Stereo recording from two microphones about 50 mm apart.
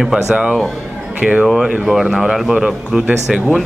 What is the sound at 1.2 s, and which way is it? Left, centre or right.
Speech, right.